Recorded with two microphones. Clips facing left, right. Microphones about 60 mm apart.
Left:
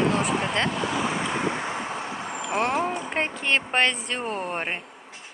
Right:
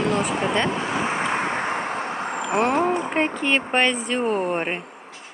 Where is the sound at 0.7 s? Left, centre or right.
Right.